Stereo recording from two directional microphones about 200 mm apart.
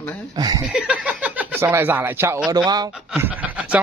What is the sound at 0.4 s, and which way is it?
Mantra, 20° right (ahead or behind).